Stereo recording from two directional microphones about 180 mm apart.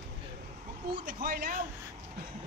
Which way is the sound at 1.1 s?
60° right (ahead or behind).